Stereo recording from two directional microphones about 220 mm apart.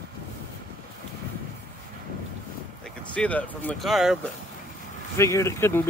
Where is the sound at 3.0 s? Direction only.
5° left (ahead or behind).